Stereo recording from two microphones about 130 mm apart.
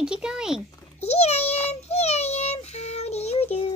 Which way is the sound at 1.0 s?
55° left (ahead or behind).